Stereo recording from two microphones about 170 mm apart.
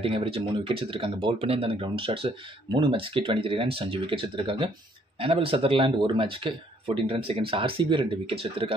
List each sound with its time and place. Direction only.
0.0 s speech: 30° right (ahead or behind)